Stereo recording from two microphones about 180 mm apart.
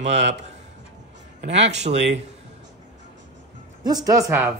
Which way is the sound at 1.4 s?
35° right (ahead or behind).